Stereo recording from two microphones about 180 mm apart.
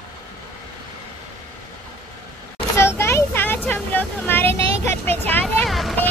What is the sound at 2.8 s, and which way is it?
Vehicle, 15° left (ahead or behind).